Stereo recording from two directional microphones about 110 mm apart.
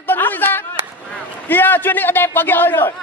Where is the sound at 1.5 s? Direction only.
15° left (ahead or behind).